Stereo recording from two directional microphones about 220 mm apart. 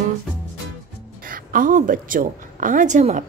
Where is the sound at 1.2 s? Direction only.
40° right (ahead or behind).